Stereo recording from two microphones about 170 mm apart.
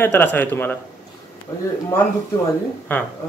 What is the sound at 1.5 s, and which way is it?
Speech, 20° left (ahead or behind).